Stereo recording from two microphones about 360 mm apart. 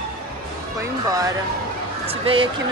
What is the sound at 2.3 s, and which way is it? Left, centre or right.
Speech, centre.